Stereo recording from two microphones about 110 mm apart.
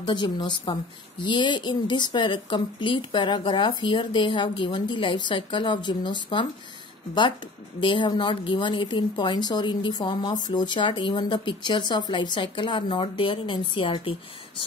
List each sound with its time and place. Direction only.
0.0 s speech: 40° left (ahead or behind)
7.8 s speech: 45° left (ahead or behind)